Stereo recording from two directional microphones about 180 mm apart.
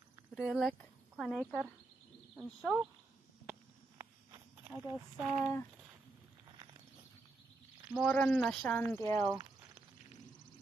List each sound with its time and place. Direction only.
0.3 s speech: 5° right (ahead or behind)
4.0 s a sound: 10° right (ahead or behind)
5.1 s speech: 5° right (ahead or behind)
5.4 s speech: 10° left (ahead or behind)
7.9 s speech: 5° left (ahead or behind)
9.0 s speech: 15° left (ahead or behind)